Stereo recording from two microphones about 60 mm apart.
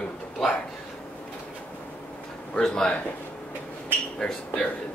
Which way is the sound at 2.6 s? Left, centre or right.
Centre.